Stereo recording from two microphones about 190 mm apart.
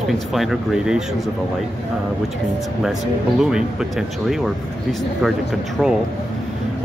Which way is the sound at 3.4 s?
5° right (ahead or behind).